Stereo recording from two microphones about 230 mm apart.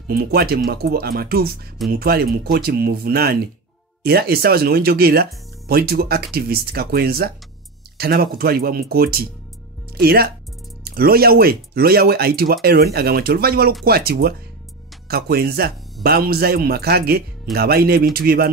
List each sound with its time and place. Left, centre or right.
0.1 s speech: right